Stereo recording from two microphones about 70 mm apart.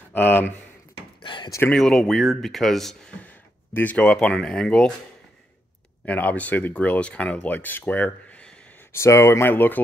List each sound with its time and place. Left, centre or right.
0.1 s speech: left
1.8 s speech: centre
3.7 s speech: left
6.0 s speech: left
8.9 s speech: left